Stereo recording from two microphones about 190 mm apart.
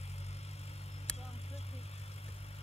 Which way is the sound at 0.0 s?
35° left (ahead or behind).